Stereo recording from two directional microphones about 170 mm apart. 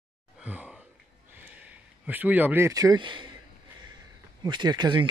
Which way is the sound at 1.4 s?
10° right (ahead or behind).